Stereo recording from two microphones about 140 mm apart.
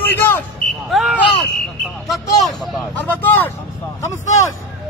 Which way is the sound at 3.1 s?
15° left (ahead or behind).